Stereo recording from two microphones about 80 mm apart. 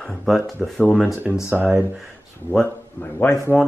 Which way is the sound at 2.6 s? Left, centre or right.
Left.